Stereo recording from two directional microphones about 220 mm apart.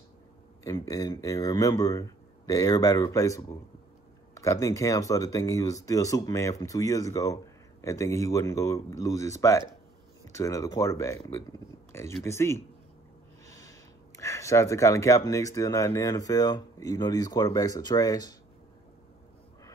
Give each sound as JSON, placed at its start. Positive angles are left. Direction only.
{"t": 0.7, "sound": "speech", "side_deg": 15}